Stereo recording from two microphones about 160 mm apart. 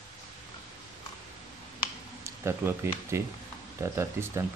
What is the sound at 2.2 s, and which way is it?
Speech, 15° right (ahead or behind).